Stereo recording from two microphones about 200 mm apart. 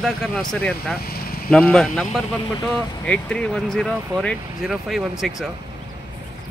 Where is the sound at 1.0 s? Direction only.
50° left (ahead or behind).